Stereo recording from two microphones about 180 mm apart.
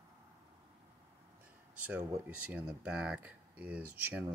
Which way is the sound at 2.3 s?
5° right (ahead or behind).